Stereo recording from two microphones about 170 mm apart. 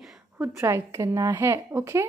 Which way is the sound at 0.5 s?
15° right (ahead or behind).